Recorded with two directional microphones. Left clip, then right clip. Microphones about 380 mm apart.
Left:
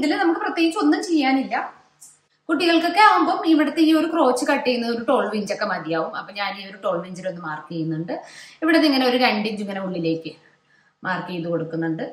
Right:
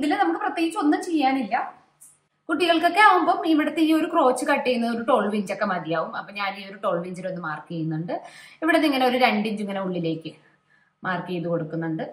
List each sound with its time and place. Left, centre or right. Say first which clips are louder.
0.4 s a woman's voice: left 3 dB; centre
8.5 s a woman's voice: left 2 dB; centre